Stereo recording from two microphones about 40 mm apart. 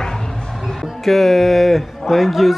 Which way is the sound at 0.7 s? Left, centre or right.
Centre.